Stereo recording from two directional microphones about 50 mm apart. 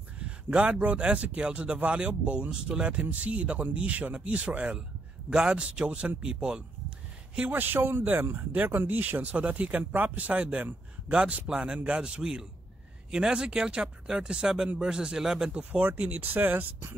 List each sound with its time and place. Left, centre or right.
0.2 s a man's voice: right
7.5 s a man's voice: right; by 15.5 s centre
15.5 s a man's voice: right